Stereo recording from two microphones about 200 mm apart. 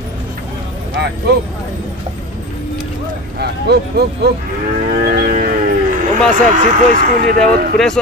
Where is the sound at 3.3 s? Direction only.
55° right (ahead or behind).